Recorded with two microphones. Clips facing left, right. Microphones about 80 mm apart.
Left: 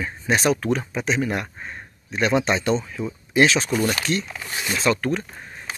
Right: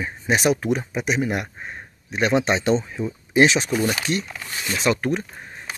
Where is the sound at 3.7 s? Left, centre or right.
Centre.